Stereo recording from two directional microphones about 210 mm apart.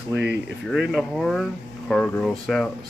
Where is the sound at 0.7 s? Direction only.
Centre (ahead or behind).